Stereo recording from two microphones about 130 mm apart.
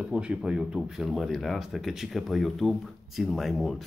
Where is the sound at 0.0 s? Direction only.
10° right (ahead or behind).